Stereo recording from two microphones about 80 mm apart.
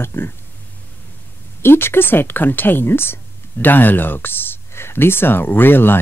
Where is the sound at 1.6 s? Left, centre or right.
Left.